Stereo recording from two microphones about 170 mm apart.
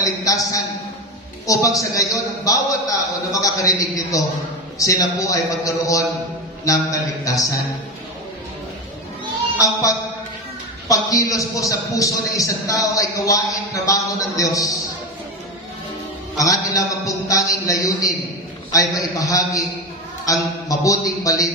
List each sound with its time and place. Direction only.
0.0 s a sound: 20° left (ahead or behind)
1.5 s a man's voice: 20° left (ahead or behind)
9.6 s a man's voice: 20° left (ahead or behind)
16.3 s a man's voice: 20° left (ahead or behind)